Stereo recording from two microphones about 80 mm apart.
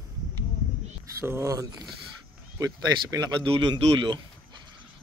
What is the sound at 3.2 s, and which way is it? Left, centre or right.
Speech, right.